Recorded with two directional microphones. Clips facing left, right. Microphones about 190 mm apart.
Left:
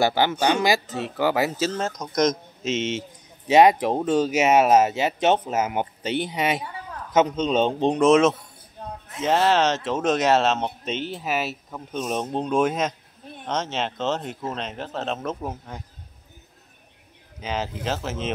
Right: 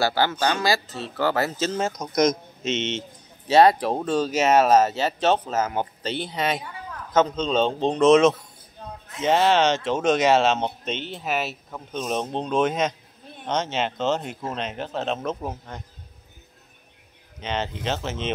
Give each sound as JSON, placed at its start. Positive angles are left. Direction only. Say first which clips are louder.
{"t": 0.0, "sound": "speech", "louder": "left 2 dB", "side_deg": 15}
{"t": 1.7, "sound": "speech", "louder": "right 2 dB", "side_deg": -5}
{"t": 2.7, "sound": "speech", "louder": "left 1 dB", "side_deg": 5}
{"t": 17.4, "sound": "speech", "louder": "even", "side_deg": 5}